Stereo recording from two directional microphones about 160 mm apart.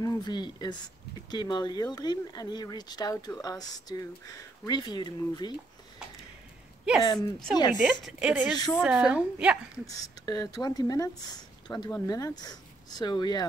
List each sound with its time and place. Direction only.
0.0 s speech: 25° left (ahead or behind)
7.0 s speech: 25° left (ahead or behind)
7.8 s speech: 5° right (ahead or behind)
9.8 s speech: 20° left (ahead or behind)